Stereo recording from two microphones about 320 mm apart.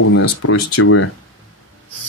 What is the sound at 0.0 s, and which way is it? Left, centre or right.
Speech, left.